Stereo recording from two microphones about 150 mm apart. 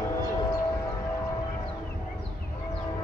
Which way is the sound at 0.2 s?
25° left (ahead or behind).